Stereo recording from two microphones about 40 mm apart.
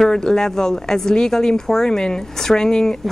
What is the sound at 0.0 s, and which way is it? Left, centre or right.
Speech, centre.